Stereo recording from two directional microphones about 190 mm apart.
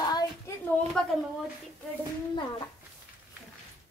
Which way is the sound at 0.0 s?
20° left (ahead or behind).